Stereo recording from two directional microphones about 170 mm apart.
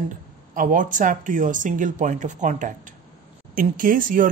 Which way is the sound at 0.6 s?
50° right (ahead or behind).